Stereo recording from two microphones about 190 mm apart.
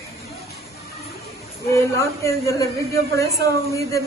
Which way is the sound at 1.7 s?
15° left (ahead or behind).